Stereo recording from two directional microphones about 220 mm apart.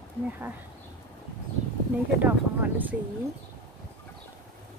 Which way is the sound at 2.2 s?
10° right (ahead or behind).